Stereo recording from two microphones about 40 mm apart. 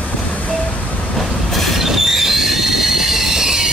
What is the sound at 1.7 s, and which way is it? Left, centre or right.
Train, centre.